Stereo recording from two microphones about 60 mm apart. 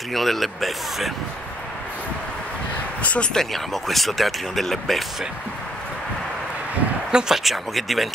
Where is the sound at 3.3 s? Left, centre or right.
Centre.